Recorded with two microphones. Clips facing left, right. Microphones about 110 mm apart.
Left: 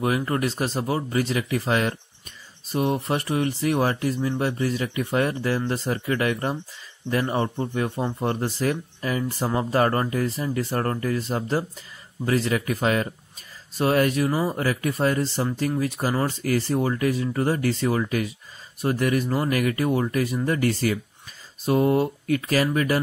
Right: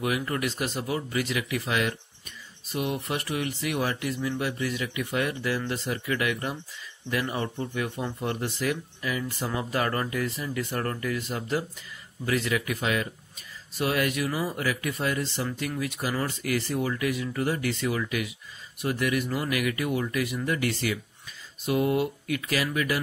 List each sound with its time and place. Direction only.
0.0 s speech: 35° left (ahead or behind)